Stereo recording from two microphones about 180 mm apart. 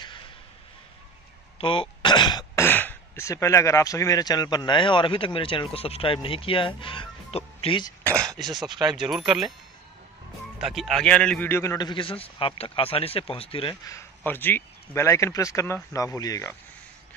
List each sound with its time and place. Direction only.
1.6 s speech: 30° left (ahead or behind)
8.5 s speech: 25° right (ahead or behind)
9.1 s speech: centre (ahead or behind)
10.6 s a man's voice: centre (ahead or behind); by 13.7 s 30° left (ahead or behind)
13.8 s speech: 15° left (ahead or behind)